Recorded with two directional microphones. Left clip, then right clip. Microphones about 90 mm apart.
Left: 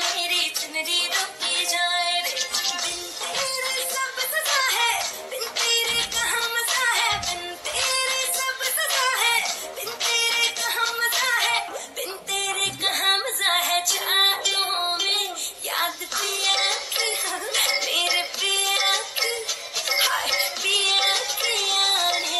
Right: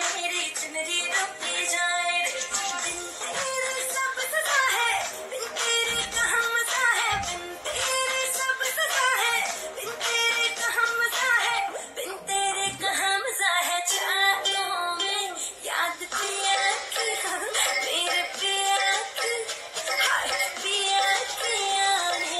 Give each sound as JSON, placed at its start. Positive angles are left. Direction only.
{"t": 0.8, "sound": "music", "side_deg": 30}
{"t": 4.4, "sound": "music", "side_deg": 25}
{"t": 8.8, "sound": "a sound", "side_deg": 25}
{"t": 10.0, "sound": "music", "side_deg": 25}